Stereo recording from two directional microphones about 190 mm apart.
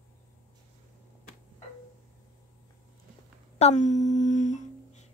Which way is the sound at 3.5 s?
35° left (ahead or behind).